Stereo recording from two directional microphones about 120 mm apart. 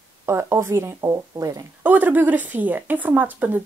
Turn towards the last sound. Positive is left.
turn(degrees=-15)  # may be behind; listen again after turning